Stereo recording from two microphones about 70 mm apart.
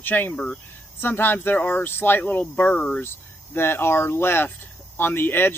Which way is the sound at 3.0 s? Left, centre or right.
Left.